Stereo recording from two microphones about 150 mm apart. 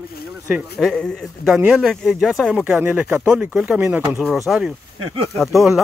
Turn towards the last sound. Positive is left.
turn(degrees=0)  # may be behind; listen again after turning